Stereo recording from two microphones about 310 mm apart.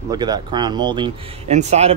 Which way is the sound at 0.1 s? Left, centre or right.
Centre.